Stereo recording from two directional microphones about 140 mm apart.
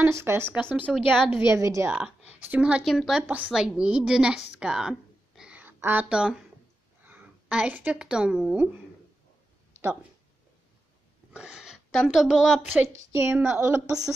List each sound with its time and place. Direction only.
0.0 s speech: 20° right (ahead or behind)
0.8 s a woman's voice: centre (ahead or behind)
1.4 s speech: 20° right (ahead or behind)
1.9 s a woman's voice: 5° right (ahead or behind)
11.3 s speech: 5° right (ahead or behind)
12.7 s a woman's voice: 20° right (ahead or behind)